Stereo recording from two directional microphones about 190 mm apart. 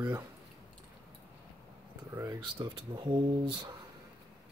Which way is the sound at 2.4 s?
25° right (ahead or behind).